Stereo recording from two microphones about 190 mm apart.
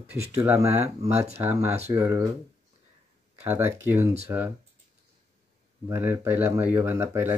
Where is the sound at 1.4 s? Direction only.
15° right (ahead or behind).